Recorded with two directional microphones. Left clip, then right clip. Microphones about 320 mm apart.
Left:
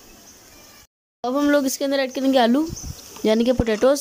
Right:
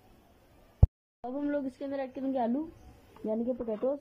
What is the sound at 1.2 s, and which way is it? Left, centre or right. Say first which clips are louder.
Speech: left 15 dB; left.